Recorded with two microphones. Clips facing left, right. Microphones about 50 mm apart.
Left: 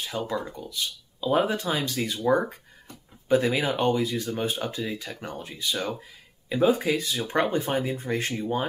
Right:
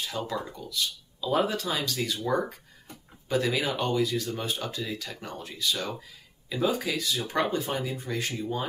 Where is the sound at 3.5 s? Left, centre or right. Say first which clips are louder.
Left 3 dB; left.